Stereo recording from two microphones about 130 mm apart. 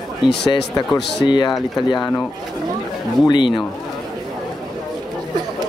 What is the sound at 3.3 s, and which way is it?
Speech, 40° left (ahead or behind).